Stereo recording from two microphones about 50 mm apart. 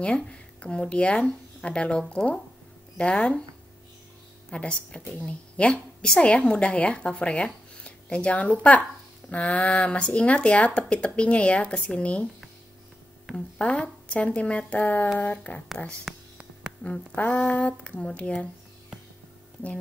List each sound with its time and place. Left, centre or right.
0.3 s a woman's voice: left
4.5 s a woman's voice: left
13.6 s a woman's voice: left
16.8 s a woman's voice: left